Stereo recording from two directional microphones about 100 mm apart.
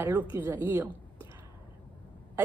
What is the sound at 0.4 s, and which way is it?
Speech, 20° right (ahead or behind).